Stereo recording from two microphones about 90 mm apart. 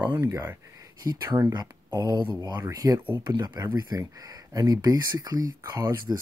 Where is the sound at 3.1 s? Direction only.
50° right (ahead or behind).